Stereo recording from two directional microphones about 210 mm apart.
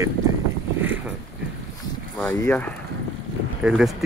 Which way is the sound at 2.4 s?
10° left (ahead or behind).